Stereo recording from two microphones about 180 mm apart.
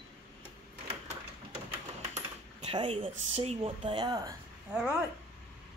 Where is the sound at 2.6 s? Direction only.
30° right (ahead or behind).